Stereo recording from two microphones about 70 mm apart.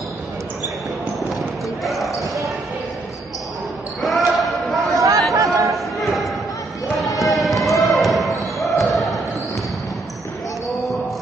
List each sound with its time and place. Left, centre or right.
1.3 s basketball bounce: centre
4.0 s basketball bounce: centre
4.9 s chatter: right
5.3 s a sound: right
5.9 s basketball bounce: centre
7.2 s run: centre
7.8 s basketball bounce: centre